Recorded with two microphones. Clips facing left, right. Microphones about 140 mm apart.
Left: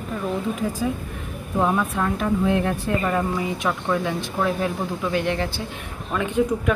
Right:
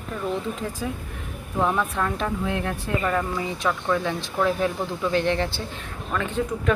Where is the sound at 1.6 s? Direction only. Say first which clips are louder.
Left 2 dB; 10° left (ahead or behind).